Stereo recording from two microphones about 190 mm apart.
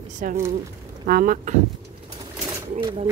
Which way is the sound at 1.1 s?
50° right (ahead or behind).